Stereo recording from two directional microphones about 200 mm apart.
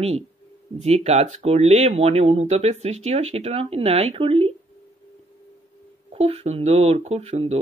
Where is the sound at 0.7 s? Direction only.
35° right (ahead or behind).